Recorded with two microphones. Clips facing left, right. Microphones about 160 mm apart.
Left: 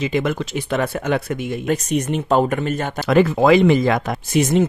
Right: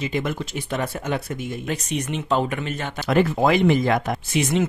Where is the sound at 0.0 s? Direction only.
90° left.